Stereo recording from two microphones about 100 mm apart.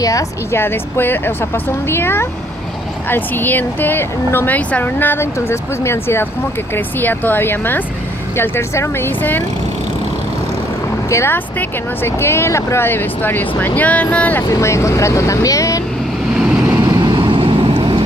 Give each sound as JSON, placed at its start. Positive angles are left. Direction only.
{"t": 0.0, "sound": "speech", "side_deg": 35}
{"t": 0.6, "sound": "speech", "side_deg": 20}
{"t": 11.1, "sound": "speech", "side_deg": 25}
{"t": 14.5, "sound": "speech", "side_deg": 30}
{"t": 16.9, "sound": "vehicle", "side_deg": -45}